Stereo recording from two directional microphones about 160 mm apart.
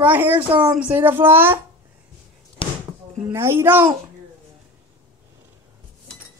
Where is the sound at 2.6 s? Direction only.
35° left (ahead or behind).